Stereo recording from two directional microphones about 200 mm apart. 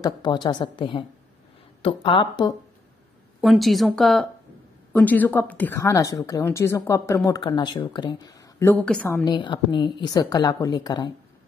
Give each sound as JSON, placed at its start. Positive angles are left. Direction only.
{"t": 0.0, "sound": "a woman's voice", "side_deg": 20}
{"t": 3.3, "sound": "a woman's voice", "side_deg": 0}
{"t": 9.3, "sound": "a woman's voice", "side_deg": 20}